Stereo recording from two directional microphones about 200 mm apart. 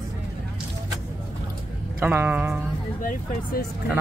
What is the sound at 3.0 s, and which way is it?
Speech, 45° left (ahead or behind).